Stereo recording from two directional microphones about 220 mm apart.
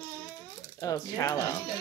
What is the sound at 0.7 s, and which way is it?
Speech, 15° left (ahead or behind).